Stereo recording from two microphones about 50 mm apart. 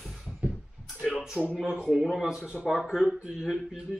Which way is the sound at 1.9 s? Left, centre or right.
Centre.